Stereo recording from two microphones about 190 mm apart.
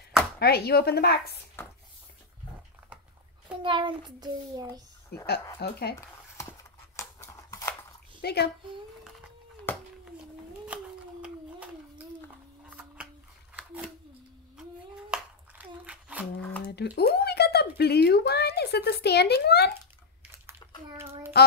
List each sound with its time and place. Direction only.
0.4 s a woman's voice: 55° left (ahead or behind)
3.6 s child singing: 25° right (ahead or behind)
5.1 s a woman's voice: 55° left (ahead or behind)
7.0 s scissors: 15° left (ahead or behind)
8.2 s a child's voice: 55° left (ahead or behind)
10.7 s a sound: 5° right (ahead or behind)
16.6 s speech: 60° left (ahead or behind)
21.4 s a woman's voice: 55° left (ahead or behind)